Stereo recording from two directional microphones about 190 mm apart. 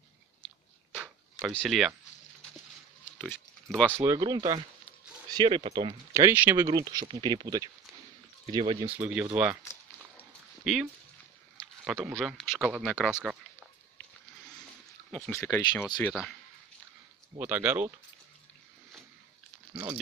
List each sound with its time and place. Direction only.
0.9 s a sound: 5° right (ahead or behind)
3.2 s pig: 5° left (ahead or behind)
3.9 s speech: 15° right (ahead or behind)
6.1 s speech: 10° right (ahead or behind); by 8.9 s 25° right (ahead or behind)
8.9 s speech: 10° right (ahead or behind)
10.6 s speech: 5° right (ahead or behind)
15.0 s speech: 5° left (ahead or behind)
16.1 s speech: centre (ahead or behind)
17.4 s speech: 10° right (ahead or behind)